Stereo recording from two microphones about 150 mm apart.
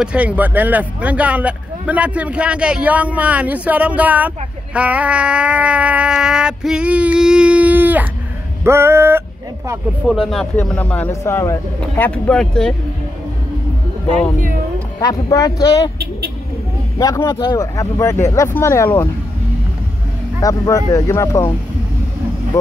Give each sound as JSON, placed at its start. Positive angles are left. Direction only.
{"t": 0.0, "sound": "speech", "side_deg": -10}
{"t": 10.0, "sound": "a man's voice", "side_deg": 0}
{"t": 12.1, "sound": "speech", "side_deg": 5}
{"t": 15.0, "sound": "speech", "side_deg": 25}
{"t": 17.0, "sound": "speech", "side_deg": 20}
{"t": 20.4, "sound": "speech", "side_deg": 20}